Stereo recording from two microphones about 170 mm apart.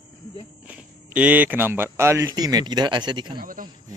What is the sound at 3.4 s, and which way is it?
Speech, 55° right (ahead or behind).